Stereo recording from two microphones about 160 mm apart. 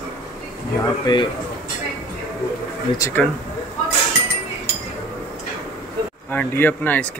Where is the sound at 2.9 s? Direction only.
20° left (ahead or behind).